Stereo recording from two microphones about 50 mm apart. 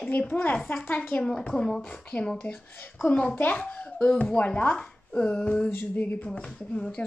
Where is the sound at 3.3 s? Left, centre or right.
Left; by 7.0 s centre.